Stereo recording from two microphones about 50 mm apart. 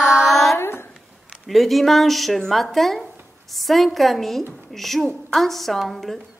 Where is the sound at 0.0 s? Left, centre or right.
Centre.